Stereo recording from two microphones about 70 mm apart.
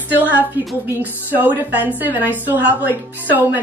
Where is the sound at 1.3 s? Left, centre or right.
Right.